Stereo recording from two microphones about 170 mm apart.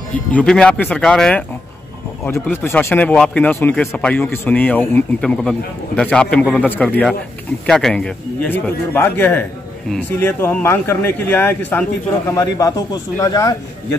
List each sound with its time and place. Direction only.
0.3 s speech: 5° left (ahead or behind)